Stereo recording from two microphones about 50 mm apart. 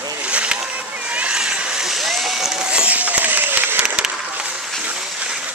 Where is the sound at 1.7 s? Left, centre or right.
Centre; by 3.8 s right.